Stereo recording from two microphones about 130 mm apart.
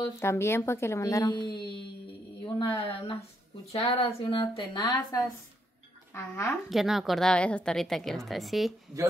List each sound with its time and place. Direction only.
0.2 s a woman's voice: 20° left (ahead or behind)
2.4 s speech: 45° left (ahead or behind)
6.1 s speech: 15° left (ahead or behind)
6.7 s a woman's voice: centre (ahead or behind)